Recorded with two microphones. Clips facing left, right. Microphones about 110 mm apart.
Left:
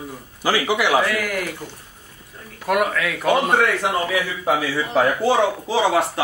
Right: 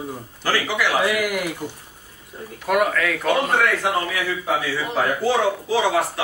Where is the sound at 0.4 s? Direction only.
15° left (ahead or behind).